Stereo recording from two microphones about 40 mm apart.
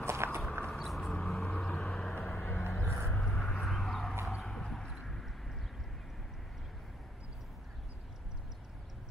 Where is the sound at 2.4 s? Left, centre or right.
Left.